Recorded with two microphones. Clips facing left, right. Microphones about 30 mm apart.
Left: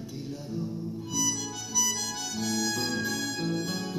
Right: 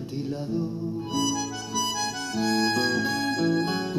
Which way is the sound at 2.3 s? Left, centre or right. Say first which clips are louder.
Right 7 dB; right.